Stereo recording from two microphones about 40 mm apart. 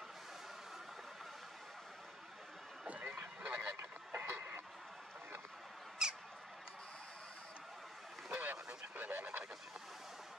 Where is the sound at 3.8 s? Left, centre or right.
Right.